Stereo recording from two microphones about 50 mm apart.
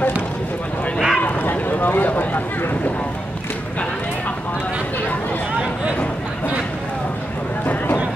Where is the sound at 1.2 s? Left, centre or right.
Left.